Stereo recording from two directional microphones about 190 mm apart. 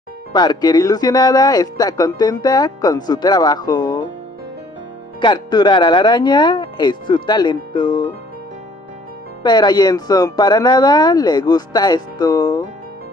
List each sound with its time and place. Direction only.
0.3 s speech: 20° left (ahead or behind)
5.2 s speech: 25° left (ahead or behind)
9.4 s speech: 20° left (ahead or behind)